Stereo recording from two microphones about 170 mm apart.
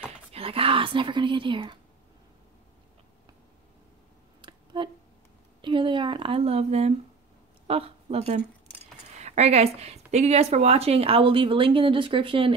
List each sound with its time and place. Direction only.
0.3 s speech: 35° right (ahead or behind)
4.4 s a sound: 30° right (ahead or behind)
5.6 s speech: 30° right (ahead or behind)